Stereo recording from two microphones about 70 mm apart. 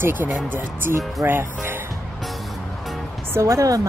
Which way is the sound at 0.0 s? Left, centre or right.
Right.